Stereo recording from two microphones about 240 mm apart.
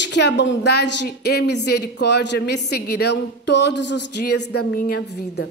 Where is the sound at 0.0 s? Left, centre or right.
Left.